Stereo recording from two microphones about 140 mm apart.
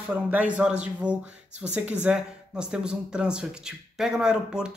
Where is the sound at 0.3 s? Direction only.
10° right (ahead or behind).